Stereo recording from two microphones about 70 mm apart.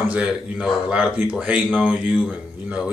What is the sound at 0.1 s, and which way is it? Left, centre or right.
Speech, centre.